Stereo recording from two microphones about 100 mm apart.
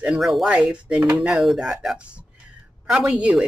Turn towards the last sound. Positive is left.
turn(degrees=-10)  # may be behind; listen again after turning